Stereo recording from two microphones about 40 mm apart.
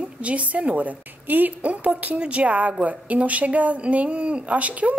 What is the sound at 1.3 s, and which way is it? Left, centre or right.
Speech, right.